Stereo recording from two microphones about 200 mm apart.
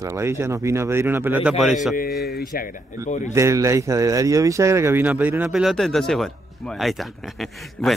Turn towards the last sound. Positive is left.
turn(degrees=0)  # may be behind; listen again after turning